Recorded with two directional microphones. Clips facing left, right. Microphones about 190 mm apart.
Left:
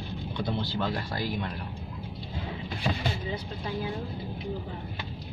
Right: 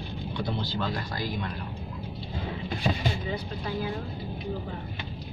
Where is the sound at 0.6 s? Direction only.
25° left (ahead or behind).